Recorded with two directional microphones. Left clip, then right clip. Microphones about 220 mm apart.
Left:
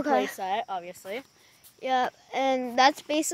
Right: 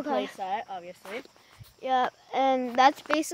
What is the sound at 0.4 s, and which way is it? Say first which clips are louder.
Speech: left 3 dB; 55° left (ahead or behind).